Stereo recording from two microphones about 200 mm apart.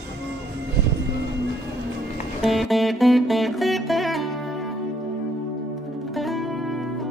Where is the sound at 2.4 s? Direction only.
Centre (ahead or behind).